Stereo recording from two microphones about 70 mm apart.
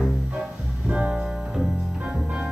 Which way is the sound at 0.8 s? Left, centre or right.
Centre.